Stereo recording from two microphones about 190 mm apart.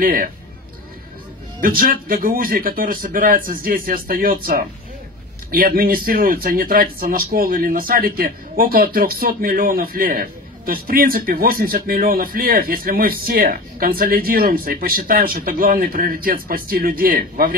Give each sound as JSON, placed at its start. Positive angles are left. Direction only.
{"t": 0.0, "sound": "speech", "side_deg": -50}
{"t": 1.6, "sound": "speech", "side_deg": -50}